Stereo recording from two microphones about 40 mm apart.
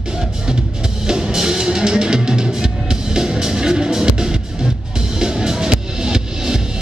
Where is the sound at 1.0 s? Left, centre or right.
Centre.